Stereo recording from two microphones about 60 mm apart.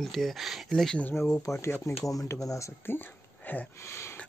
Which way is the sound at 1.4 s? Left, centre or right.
Left.